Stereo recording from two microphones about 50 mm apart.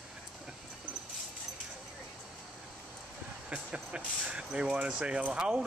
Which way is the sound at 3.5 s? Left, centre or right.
Right.